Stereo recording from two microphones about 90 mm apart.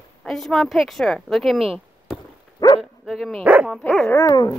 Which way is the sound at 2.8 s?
Centre (ahead or behind).